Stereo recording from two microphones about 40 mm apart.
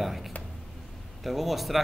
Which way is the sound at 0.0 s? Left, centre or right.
Centre.